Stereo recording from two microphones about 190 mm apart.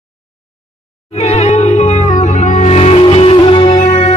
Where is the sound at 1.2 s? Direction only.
35° left (ahead or behind).